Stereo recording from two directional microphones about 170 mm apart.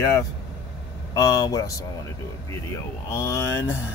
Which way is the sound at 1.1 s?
20° left (ahead or behind).